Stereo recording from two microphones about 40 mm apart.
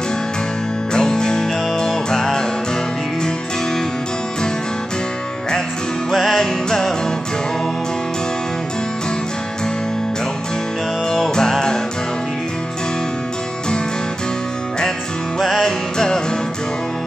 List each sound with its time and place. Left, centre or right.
0.9 s music: centre
6.1 s music: centre
11.1 s music: centre
15.3 s music: centre